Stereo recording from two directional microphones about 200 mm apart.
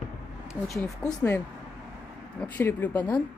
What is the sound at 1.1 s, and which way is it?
Speech, 5° left (ahead or behind).